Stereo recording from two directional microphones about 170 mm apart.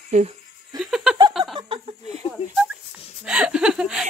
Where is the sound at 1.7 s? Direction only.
30° right (ahead or behind).